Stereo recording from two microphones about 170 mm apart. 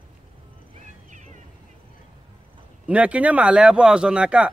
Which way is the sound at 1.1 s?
45° right (ahead or behind).